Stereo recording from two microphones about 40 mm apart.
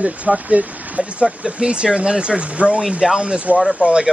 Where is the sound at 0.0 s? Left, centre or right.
Right.